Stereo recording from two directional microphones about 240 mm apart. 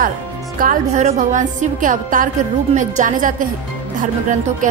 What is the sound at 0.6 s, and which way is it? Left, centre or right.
A woman's voice, right.